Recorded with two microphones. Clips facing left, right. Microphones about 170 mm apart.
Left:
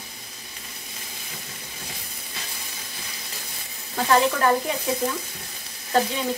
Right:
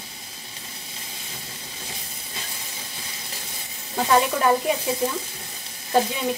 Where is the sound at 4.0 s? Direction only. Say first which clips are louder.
Even; 15° right (ahead or behind).